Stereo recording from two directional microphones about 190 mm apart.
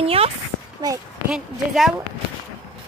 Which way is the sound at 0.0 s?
30° right (ahead or behind).